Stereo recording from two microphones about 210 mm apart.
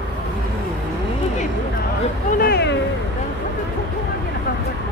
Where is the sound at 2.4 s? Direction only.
50° left (ahead or behind).